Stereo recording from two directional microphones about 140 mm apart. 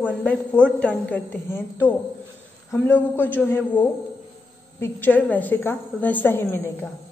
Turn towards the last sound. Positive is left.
turn(degrees=15)  # may be behind; listen again after turning